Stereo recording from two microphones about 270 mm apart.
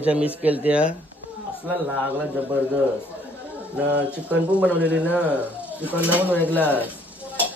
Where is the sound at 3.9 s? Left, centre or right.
Centre.